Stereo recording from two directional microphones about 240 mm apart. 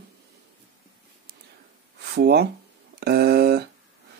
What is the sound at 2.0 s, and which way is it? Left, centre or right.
Speech, right.